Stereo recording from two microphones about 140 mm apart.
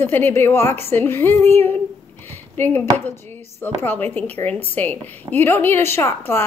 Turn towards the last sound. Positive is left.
turn(degrees=15)  # may be behind; listen again after turning